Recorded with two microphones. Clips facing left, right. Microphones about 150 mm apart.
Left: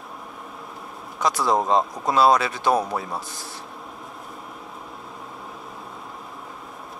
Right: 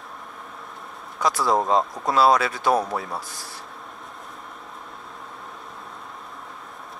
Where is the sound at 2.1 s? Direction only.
20° left (ahead or behind).